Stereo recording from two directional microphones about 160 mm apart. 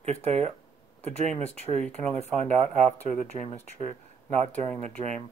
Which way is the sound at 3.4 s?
40° left (ahead or behind).